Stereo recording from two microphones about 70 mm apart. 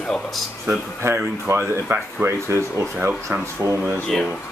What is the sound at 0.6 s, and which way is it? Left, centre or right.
Speech, right.